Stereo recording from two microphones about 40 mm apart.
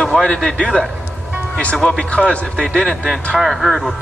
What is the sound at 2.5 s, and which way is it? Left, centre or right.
Speech, centre.